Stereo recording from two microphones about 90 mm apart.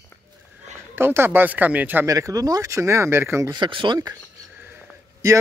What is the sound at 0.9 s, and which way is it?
Speech, 25° right (ahead or behind).